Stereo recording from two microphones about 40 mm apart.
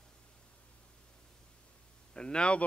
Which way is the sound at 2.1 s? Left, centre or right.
Left.